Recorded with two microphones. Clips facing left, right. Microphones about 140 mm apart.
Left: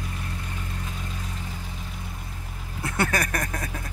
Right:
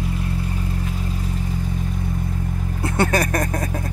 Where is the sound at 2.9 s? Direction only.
30° right (ahead or behind).